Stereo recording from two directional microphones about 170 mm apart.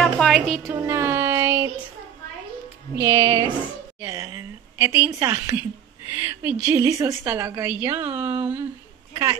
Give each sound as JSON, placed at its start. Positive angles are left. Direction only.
{"t": 0.0, "sound": "a sound", "side_deg": 0}
{"t": 0.7, "sound": "child singing", "side_deg": -15}
{"t": 3.0, "sound": "a woman's voice", "side_deg": -15}